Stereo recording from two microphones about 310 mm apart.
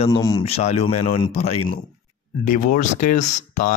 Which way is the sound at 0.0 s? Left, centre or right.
Centre.